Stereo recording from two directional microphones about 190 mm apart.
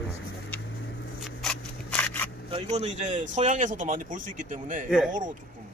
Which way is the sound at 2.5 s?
35° right (ahead or behind).